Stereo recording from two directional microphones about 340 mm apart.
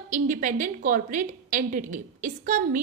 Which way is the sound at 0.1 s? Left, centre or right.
Right.